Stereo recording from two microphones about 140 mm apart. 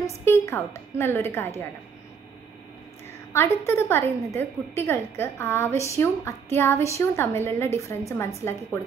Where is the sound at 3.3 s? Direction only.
20° left (ahead or behind).